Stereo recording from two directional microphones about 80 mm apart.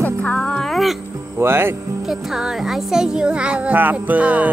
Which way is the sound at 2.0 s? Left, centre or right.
Centre.